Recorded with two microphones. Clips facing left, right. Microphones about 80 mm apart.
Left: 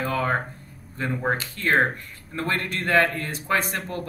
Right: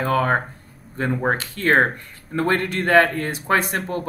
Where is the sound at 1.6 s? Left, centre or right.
Right.